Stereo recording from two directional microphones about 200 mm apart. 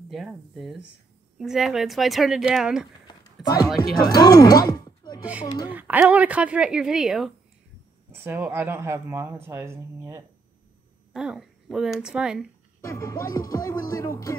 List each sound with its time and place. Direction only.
0.1 s speech: centre (ahead or behind)
3.4 s speech: 20° left (ahead or behind)
5.2 s speech: 5° right (ahead or behind)
12.8 s music: 15° left (ahead or behind)